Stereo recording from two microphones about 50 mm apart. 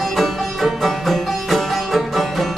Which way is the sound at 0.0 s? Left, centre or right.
Centre.